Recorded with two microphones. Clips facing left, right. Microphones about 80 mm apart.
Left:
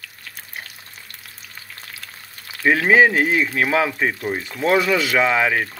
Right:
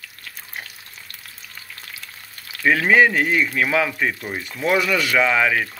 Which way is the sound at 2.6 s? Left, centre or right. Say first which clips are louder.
Left 1 dB; left.